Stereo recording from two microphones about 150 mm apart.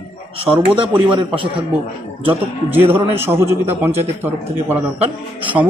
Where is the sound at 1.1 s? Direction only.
35° right (ahead or behind).